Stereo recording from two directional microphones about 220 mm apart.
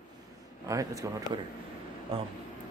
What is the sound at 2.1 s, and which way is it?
Speech, 25° right (ahead or behind).